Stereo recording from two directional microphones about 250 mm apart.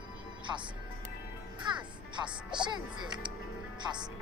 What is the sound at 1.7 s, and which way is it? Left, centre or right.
Music, centre.